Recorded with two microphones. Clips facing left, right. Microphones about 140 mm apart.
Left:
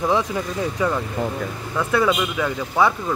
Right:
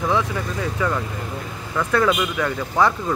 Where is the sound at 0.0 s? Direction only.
15° left (ahead or behind).